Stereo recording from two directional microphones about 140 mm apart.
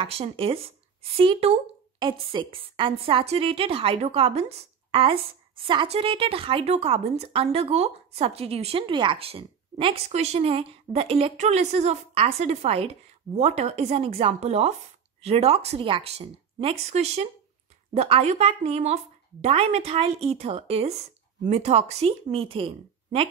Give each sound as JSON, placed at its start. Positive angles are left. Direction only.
{"t": 0.0, "sound": "a woman's voice", "side_deg": -40}